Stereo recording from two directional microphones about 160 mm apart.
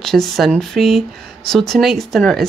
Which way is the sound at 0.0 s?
Centre (ahead or behind).